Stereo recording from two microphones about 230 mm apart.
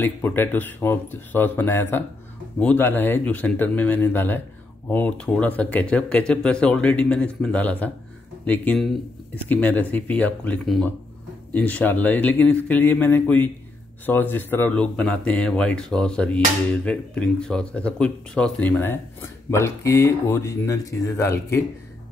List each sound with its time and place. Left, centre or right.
0.0 s speech: centre